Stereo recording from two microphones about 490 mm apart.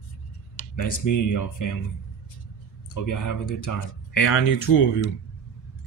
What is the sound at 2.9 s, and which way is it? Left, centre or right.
Speech, left.